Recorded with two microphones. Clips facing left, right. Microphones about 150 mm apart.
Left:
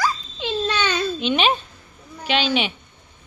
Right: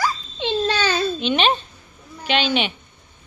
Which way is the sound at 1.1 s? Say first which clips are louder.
Even; 5° left (ahead or behind).